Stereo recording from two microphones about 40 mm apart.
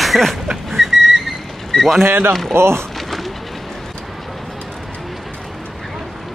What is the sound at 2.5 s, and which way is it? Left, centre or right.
Speech, right.